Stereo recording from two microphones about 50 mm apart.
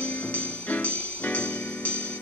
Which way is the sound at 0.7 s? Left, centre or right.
Left.